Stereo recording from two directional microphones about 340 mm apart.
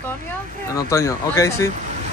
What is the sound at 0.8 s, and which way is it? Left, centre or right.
Speech, centre.